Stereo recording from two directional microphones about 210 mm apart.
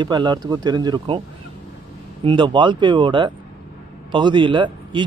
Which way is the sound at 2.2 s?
25° right (ahead or behind).